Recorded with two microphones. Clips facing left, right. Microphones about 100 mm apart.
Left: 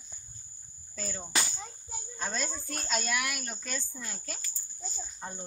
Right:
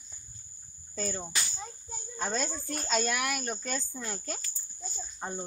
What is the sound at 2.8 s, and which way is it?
Speech, 40° right (ahead or behind).